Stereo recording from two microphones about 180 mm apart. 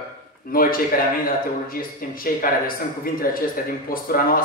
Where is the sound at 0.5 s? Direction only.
55° left (ahead or behind).